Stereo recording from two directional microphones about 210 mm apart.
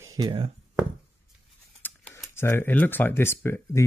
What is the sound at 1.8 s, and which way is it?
Speech, 10° left (ahead or behind).